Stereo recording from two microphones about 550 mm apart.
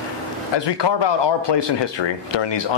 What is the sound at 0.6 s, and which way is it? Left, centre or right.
Speech, left.